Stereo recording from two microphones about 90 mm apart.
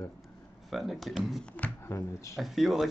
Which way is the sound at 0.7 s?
Centre (ahead or behind).